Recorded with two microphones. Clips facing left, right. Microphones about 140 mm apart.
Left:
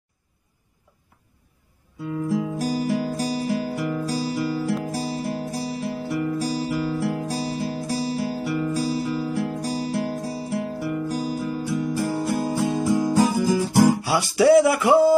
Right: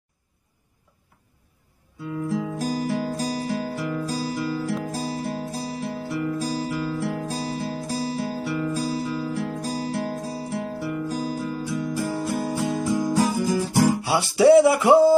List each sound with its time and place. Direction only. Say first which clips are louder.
2.2 s music: left 2 dB; 5° left (ahead or behind)
14.0 s music: right 1 dB; 25° right (ahead or behind)